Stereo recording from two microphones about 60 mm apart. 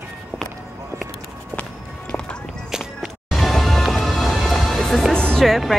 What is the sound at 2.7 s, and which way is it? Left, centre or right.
Music, centre.